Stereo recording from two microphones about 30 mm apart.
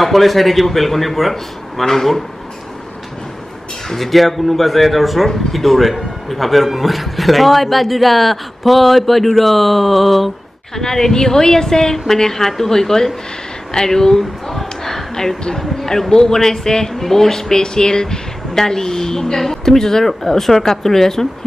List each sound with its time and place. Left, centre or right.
0.0 s a man's voice: centre
3.9 s a man's voice: centre
10.8 s speech: centre